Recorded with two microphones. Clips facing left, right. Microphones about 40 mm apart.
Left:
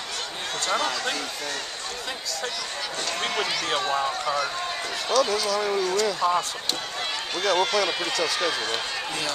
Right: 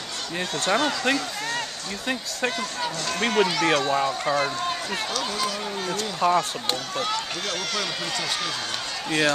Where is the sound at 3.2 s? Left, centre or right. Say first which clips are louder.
Right 7 dB; centre.